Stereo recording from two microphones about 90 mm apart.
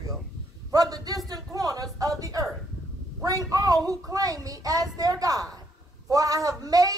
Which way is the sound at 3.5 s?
45° right (ahead or behind).